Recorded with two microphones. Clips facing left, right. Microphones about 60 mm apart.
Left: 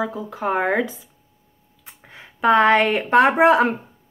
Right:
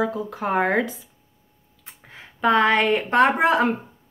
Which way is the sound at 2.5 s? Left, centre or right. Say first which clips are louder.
Left 3 dB; left.